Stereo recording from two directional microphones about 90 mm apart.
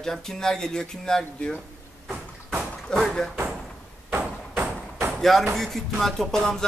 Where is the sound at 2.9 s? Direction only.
5° left (ahead or behind).